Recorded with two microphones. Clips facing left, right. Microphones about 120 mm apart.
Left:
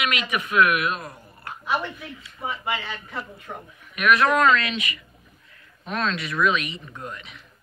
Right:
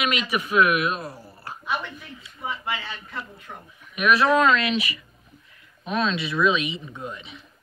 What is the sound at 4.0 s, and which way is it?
Speech, 25° right (ahead or behind).